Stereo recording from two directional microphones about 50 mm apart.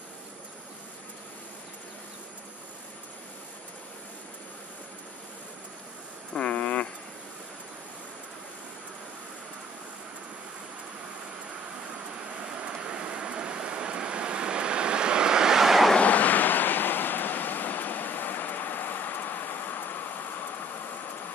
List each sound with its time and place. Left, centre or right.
6.3 s a sound: left
12.5 s vehicle: right; by 15.9 s centre
16.0 s vehicle: left